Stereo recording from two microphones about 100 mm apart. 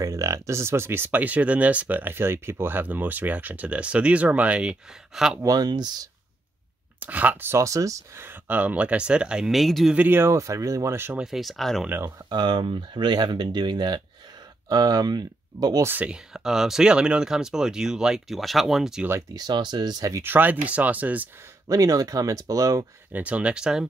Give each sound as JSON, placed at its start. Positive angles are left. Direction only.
{"t": 0.0, "sound": "speech", "side_deg": -30}
{"t": 5.4, "sound": "speech", "side_deg": -40}
{"t": 7.0, "sound": "speech", "side_deg": -15}
{"t": 8.3, "sound": "speech", "side_deg": -15}
{"t": 9.9, "sound": "speech", "side_deg": -20}
{"t": 11.1, "sound": "speech", "side_deg": -5}
{"t": 12.3, "sound": "speech", "side_deg": -45}
{"t": 15.8, "sound": "speech", "side_deg": -20}
{"t": 19.3, "sound": "speech", "side_deg": -45}
{"t": 20.2, "sound": "speech", "side_deg": -20}
{"t": 21.6, "sound": "speech", "side_deg": -35}
{"t": 23.1, "sound": "speech", "side_deg": -15}